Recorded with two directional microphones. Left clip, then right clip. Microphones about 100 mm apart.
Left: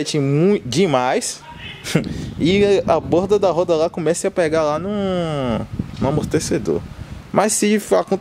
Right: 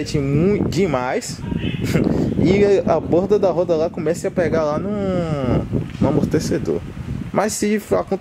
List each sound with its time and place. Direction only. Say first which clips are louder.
0.0 s speech: left 2 dB; 20° left (ahead or behind)